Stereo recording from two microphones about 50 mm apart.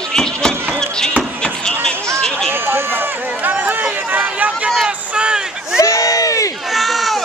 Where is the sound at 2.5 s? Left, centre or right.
Right.